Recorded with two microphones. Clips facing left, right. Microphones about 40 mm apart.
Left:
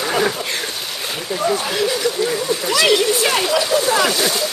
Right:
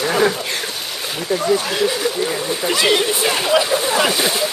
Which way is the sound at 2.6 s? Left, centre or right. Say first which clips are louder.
Left 1 dB; right.